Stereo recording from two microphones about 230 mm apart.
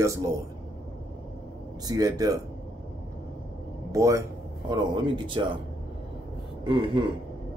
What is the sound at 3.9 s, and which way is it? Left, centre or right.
Speech, centre.